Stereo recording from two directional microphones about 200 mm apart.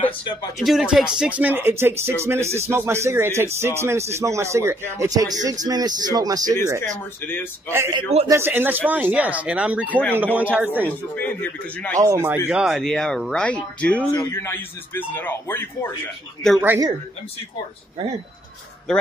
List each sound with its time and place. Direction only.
0.6 s speech: centre (ahead or behind); by 6.6 s 20° right (ahead or behind)
7.7 s speech: 15° right (ahead or behind)
11.1 s a man's voice: 10° left (ahead or behind)
12.0 s a man's voice: 10° right (ahead or behind); by 15.9 s 10° left (ahead or behind)
16.6 s speech: 10° right (ahead or behind)